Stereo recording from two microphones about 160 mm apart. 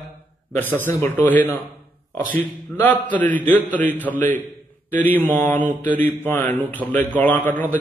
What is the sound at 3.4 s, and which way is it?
Speech, 10° right (ahead or behind).